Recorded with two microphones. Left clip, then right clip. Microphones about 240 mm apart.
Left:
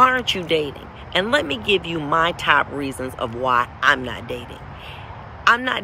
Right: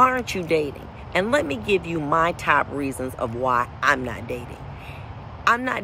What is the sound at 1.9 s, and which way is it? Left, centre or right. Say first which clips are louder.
Speech: left 2 dB; centre.